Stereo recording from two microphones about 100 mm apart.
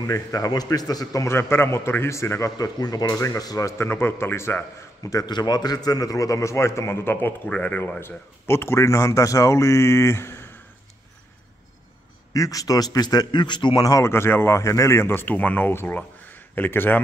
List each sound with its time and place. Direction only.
0.0 s a man's voice: 35° left (ahead or behind)
2.5 s a man's voice: 40° left (ahead or behind); by 5.1 s 25° left (ahead or behind)
5.2 s a man's voice: 45° left (ahead or behind); by 10.5 s 25° left (ahead or behind)
12.4 s a man's voice: 35° left (ahead or behind)
13.8 s a man's voice: 30° left (ahead or behind)